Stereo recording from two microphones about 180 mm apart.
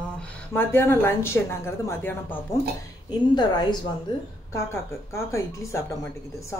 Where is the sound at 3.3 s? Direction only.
25° left (ahead or behind).